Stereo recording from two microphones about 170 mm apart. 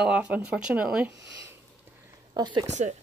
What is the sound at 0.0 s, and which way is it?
Speech, 5° right (ahead or behind).